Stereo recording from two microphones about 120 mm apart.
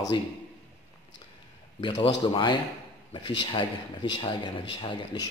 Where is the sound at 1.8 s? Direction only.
45° left (ahead or behind).